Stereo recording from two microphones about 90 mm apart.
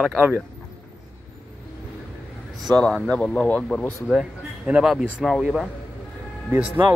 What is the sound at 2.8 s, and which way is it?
Speech, 10° left (ahead or behind).